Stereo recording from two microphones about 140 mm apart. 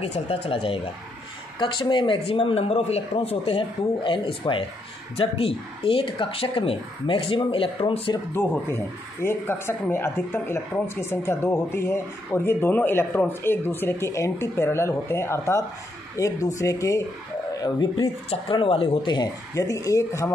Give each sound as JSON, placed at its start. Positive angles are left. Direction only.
{"t": 0.0, "sound": "speech", "side_deg": 45}
{"t": 8.3, "sound": "speech", "side_deg": 15}
{"t": 18.3, "sound": "speech", "side_deg": 40}